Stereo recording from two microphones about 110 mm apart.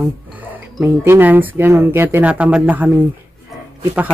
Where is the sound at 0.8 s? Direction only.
20° right (ahead or behind).